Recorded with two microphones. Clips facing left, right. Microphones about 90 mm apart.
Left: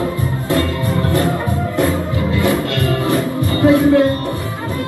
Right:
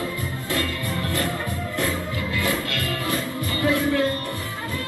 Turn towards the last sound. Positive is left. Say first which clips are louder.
# left 10 dB
turn(degrees=25)  # may be behind; listen again after turning